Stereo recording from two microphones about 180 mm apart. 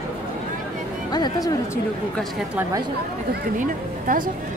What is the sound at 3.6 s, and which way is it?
Speech, 50° right (ahead or behind).